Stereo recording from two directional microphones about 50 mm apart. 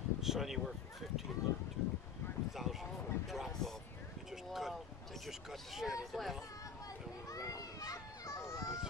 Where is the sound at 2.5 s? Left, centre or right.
Centre.